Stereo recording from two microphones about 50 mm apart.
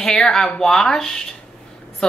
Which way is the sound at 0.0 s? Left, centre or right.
Centre.